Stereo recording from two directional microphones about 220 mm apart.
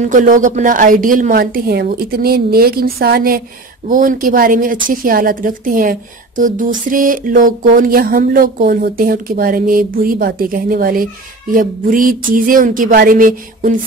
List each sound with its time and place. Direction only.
0.0 s speech: 35° right (ahead or behind)